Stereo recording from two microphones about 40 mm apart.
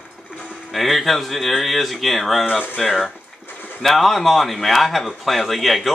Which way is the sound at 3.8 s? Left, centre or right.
Centre.